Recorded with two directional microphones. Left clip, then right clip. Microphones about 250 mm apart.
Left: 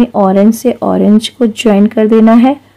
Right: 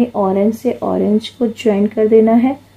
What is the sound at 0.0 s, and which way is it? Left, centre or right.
Speech, left.